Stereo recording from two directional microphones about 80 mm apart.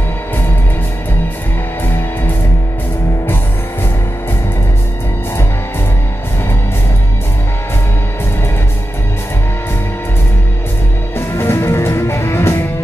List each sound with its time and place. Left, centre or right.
11.1 s music: left